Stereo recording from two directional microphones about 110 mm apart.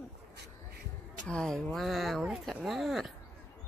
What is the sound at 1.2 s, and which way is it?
Speech, 5° left (ahead or behind).